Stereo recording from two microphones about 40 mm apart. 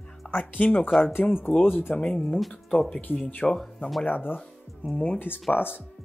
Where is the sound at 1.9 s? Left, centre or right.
Left.